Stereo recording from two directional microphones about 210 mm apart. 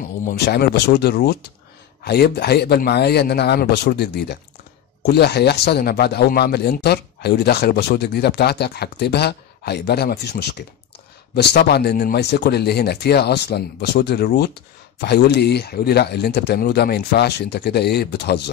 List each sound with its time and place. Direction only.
0.2 s a man's voice: 45° left (ahead or behind)